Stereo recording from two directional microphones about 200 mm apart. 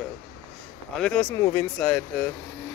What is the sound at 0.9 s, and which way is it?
Speech, 5° left (ahead or behind).